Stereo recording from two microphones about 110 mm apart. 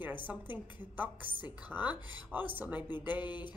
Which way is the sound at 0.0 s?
15° right (ahead or behind).